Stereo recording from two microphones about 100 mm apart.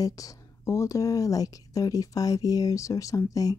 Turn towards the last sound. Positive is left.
turn(degrees=35)  # may be behind; listen again after turning